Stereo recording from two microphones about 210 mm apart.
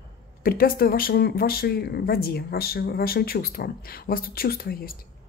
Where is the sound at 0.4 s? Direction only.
45° left (ahead or behind).